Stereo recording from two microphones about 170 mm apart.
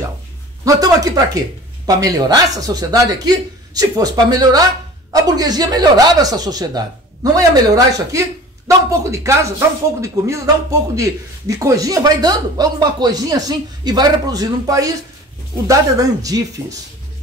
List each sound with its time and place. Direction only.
0.7 s speech: 20° right (ahead or behind)